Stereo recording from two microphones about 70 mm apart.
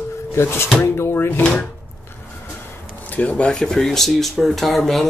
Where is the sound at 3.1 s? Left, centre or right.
Left; by 5.0 s centre.